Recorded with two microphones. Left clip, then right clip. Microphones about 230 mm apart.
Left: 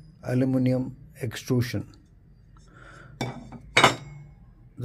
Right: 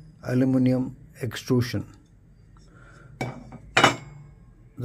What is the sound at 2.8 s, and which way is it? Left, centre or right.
Dishes, centre.